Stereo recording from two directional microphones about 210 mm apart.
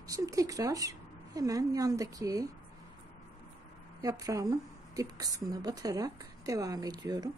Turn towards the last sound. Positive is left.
turn(degrees=-20)  # may be behind; listen again after turning